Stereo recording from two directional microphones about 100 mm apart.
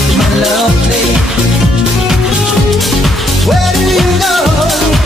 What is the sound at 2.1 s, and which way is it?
Music, 5° right (ahead or behind).